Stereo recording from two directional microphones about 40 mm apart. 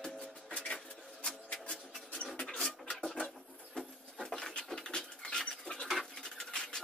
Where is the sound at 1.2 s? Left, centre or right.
Centre.